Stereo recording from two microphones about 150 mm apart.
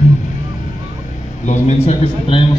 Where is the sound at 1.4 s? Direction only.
50° left (ahead or behind).